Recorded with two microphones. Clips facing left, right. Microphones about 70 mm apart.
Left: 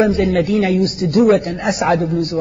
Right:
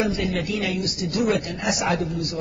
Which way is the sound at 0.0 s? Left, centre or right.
Left.